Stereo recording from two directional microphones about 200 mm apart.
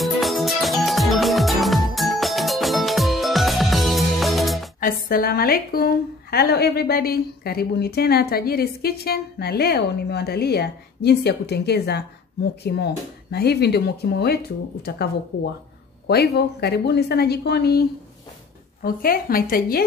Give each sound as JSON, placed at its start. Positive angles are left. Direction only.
{"t": 0.0, "sound": "music", "side_deg": 0}
{"t": 4.7, "sound": "a woman's voice", "side_deg": 45}
{"t": 16.1, "sound": "a woman's voice", "side_deg": 55}